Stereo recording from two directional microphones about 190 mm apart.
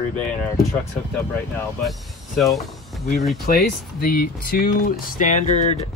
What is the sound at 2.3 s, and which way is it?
Speech, centre (ahead or behind).